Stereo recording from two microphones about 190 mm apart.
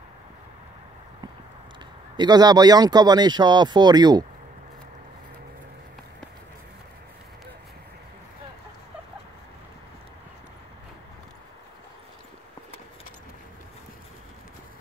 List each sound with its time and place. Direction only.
2.1 s speech: 20° right (ahead or behind)